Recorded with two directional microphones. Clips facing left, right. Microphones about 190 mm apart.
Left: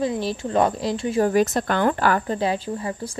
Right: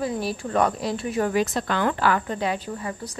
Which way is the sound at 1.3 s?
45° left (ahead or behind).